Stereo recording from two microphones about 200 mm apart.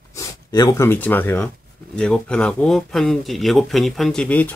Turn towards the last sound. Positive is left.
turn(degrees=5)  # may be behind; listen again after turning